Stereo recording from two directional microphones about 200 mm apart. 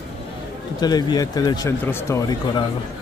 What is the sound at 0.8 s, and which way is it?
A man's voice, 20° left (ahead or behind).